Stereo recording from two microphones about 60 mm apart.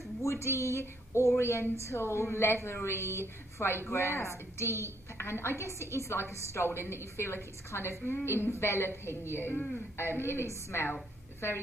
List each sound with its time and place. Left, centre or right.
0.2 s a woman's voice: left